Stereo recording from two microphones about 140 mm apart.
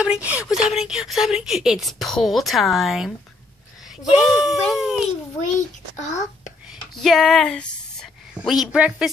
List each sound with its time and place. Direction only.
0.0 s a woman's voice: 10° right (ahead or behind)
5.6 s a child's voice: 60° left (ahead or behind)
7.0 s a woman's voice: centre (ahead or behind)